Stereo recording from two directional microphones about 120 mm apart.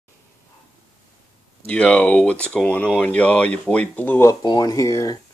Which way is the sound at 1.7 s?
10° left (ahead or behind).